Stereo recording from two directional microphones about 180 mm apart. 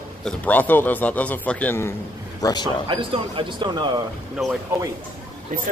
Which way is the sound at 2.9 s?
30° right (ahead or behind).